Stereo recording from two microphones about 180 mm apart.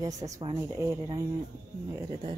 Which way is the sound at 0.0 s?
20° right (ahead or behind).